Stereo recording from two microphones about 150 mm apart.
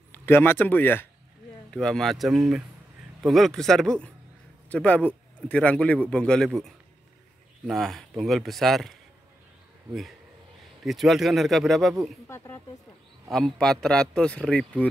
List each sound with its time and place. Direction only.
0.1 s a man's voice: 15° left (ahead or behind)
10.8 s speech: centre (ahead or behind)
12.3 s a man's voice: 15° left (ahead or behind)
13.3 s speech: 5° left (ahead or behind)